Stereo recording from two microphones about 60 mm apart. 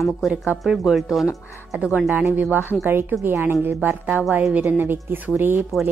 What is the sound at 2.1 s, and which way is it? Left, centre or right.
A woman's voice, right.